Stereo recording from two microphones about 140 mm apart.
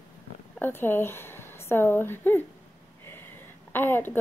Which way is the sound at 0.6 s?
15° left (ahead or behind).